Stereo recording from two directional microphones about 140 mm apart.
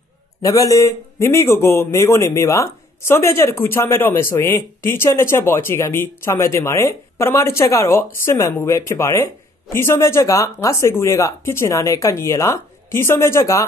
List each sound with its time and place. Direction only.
0.4 s a man's voice: 25° left (ahead or behind)